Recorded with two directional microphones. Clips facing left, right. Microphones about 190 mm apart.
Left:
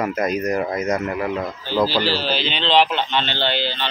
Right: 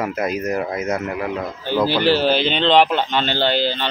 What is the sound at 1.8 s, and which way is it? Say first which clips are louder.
A man's voice: right 8 dB; 55° right (ahead or behind).